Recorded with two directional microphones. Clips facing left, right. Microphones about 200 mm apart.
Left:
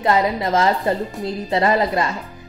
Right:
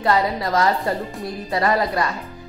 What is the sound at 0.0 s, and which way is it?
A woman's voice, 20° left (ahead or behind).